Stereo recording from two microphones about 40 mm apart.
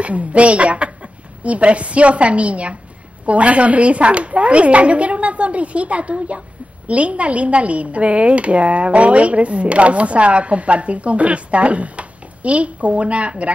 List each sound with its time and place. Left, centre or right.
0.0 s speech: right